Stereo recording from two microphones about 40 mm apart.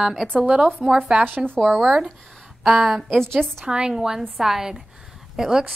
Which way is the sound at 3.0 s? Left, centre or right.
Centre.